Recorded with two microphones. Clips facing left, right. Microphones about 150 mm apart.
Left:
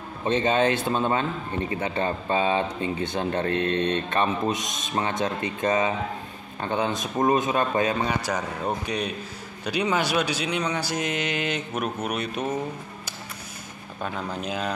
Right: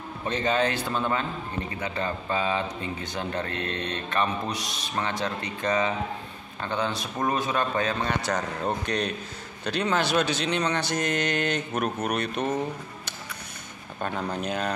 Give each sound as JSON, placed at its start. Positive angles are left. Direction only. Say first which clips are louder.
{"t": 0.2, "sound": "a man's voice", "louder": "left 4 dB", "side_deg": 20}
{"t": 14.0, "sound": "a man's voice", "louder": "right 1 dB", "side_deg": 5}